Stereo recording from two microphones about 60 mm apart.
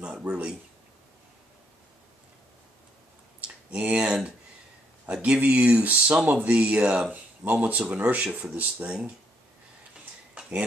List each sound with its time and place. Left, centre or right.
0.2 s speech: right
3.7 s speech: right
5.1 s speech: centre